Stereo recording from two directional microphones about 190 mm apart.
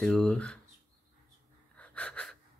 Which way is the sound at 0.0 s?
5° left (ahead or behind).